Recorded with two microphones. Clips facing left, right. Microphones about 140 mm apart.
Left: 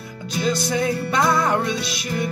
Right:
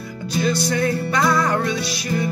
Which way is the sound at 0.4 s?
20° left (ahead or behind).